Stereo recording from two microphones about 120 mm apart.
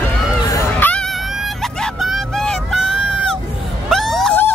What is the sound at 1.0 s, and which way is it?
Vehicle, centre (ahead or behind).